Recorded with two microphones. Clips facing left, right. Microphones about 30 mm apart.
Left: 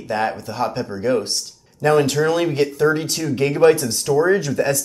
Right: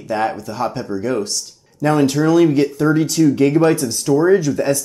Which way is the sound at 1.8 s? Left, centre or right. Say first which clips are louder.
Even; left.